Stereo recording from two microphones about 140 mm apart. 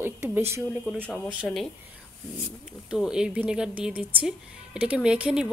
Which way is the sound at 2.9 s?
5° right (ahead or behind).